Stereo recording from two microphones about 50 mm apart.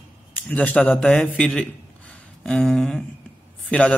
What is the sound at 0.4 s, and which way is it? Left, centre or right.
Speech, left.